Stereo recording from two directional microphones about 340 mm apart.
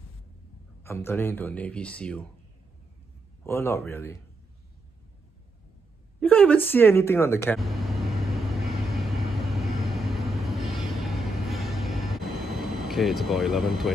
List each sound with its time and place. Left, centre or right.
0.8 s speech: centre
3.4 s speech: centre
6.1 s speech: centre
7.4 s vehicle: centre